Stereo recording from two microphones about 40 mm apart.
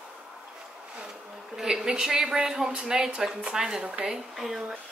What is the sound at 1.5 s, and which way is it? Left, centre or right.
A woman's voice, centre.